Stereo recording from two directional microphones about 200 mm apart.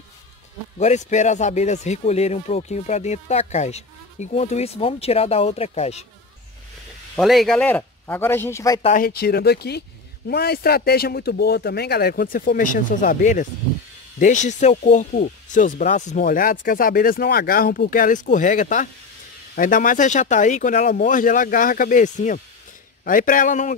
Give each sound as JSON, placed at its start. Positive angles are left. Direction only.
{"t": 0.7, "sound": "speech", "side_deg": 35}
{"t": 7.2, "sound": "speech", "side_deg": 0}
{"t": 8.8, "sound": "speech", "side_deg": 45}